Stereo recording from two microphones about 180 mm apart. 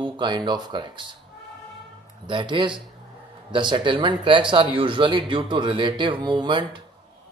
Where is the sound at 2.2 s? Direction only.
25° right (ahead or behind).